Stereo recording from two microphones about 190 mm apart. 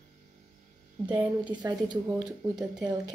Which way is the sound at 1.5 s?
20° right (ahead or behind).